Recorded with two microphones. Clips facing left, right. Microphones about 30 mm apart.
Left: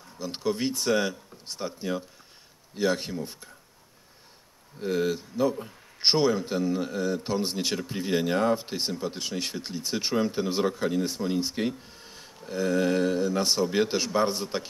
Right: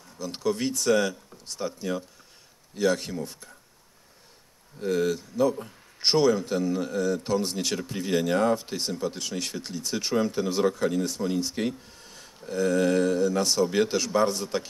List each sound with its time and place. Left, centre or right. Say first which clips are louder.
0.0 s a man's voice: right 1 dB; left
4.7 s a man's voice: right 1 dB; centre
11.9 s a sound: left 1 dB; left
12.5 s a man's voice: right 2 dB; centre